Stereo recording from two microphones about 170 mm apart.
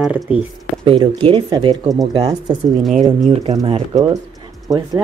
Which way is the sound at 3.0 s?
40° right (ahead or behind).